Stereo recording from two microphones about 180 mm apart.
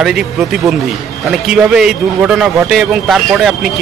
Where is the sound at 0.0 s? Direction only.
Centre (ahead or behind).